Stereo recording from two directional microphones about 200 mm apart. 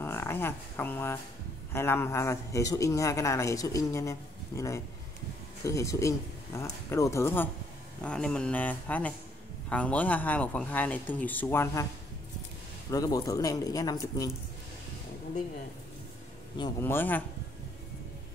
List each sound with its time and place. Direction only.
0.0 s a man's voice: 10° left (ahead or behind)
12.9 s a man's voice: 15° left (ahead or behind)
16.8 s a man's voice: 10° left (ahead or behind)